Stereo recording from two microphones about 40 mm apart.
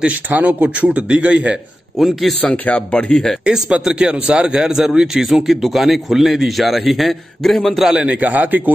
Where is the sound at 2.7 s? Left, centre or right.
Left.